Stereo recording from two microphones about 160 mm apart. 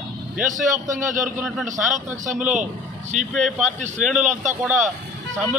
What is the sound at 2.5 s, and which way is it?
A man's voice, 50° right (ahead or behind).